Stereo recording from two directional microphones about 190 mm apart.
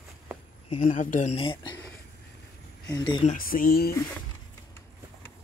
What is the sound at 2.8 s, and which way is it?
Speech, 20° left (ahead or behind).